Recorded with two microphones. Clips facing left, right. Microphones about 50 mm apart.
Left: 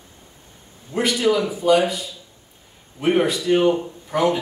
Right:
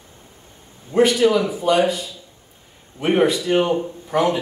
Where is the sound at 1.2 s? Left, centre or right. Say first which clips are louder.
Even; centre.